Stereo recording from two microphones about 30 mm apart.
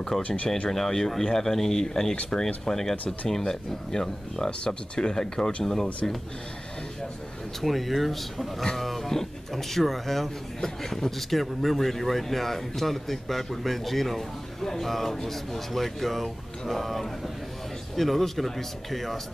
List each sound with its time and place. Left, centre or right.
0.1 s speech: centre
7.6 s speech: centre